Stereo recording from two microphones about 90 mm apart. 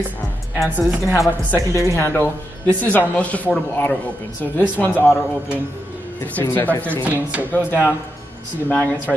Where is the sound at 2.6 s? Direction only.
20° left (ahead or behind).